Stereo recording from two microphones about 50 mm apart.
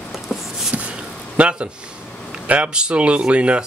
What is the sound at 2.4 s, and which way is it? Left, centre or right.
Speech, right.